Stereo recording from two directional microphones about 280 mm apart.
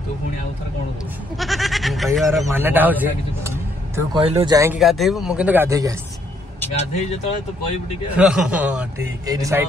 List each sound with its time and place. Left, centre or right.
1.4 s speech: centre
4.7 s a man's voice: centre
6.9 s speech: left
8.2 s a man's voice: centre